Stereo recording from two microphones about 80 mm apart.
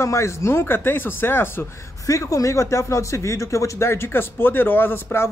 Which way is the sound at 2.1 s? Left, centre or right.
Left.